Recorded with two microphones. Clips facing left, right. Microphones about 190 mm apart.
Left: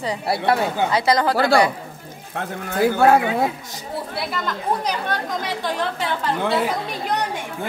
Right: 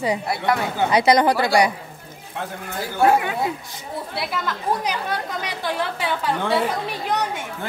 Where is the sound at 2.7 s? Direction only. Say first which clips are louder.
Left 3 dB; 65° left (ahead or behind).